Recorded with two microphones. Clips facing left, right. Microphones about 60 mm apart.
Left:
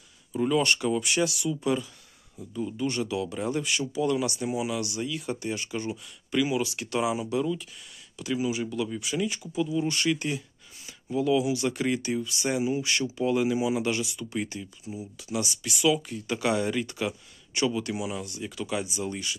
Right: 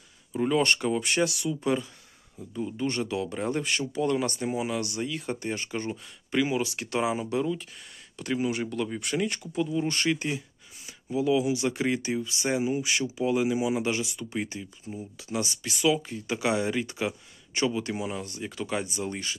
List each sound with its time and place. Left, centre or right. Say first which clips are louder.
0.3 s speech: even; right
8.2 s speech: even; right
9.8 s speech: left 1 dB; right
11.1 s speech: even; centre
12.8 s speech: even; centre
15.1 s speech: even; right